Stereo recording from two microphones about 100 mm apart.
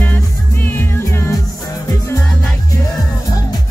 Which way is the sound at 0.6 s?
20° left (ahead or behind).